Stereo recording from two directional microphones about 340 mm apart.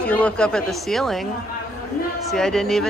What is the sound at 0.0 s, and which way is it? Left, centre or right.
Speech, centre.